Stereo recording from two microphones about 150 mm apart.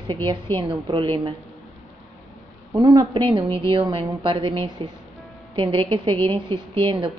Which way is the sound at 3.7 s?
35° right (ahead or behind).